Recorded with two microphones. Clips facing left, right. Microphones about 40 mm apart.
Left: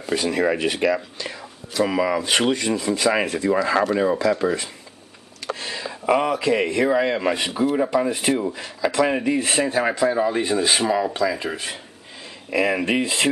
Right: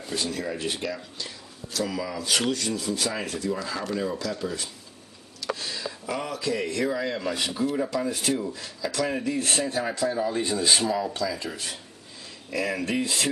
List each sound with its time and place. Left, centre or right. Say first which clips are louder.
0.1 s speech: left 9 dB; left
0.5 s speech: left 10 dB; left
1.7 s speech: left 9 dB; left
3.4 s speech: left 11 dB; left
3.9 s speech: left 9 dB; left
4.4 s speech: left 9 dB; left
5.6 s a sound: left 4 dB; left
6.7 s speech: left 8 dB; left